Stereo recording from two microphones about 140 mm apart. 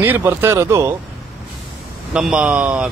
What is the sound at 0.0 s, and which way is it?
Speech, 15° right (ahead or behind).